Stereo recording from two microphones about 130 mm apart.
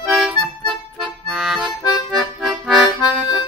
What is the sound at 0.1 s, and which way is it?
Music, centre (ahead or behind).